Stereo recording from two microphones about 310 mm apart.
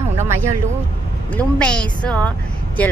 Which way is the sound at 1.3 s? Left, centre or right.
Centre.